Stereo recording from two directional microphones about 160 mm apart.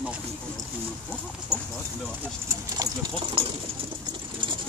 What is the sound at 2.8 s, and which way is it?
Speech, 25° right (ahead or behind).